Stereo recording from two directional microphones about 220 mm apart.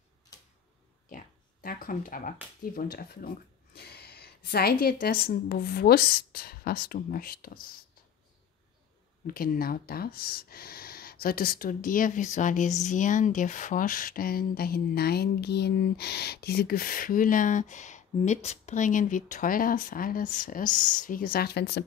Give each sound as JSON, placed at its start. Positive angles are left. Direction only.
{"t": 1.1, "sound": "a woman's voice", "side_deg": 40}
{"t": 9.3, "sound": "speech", "side_deg": 40}